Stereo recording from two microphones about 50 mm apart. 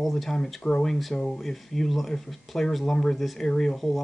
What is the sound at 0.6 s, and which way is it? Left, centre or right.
Speech, centre.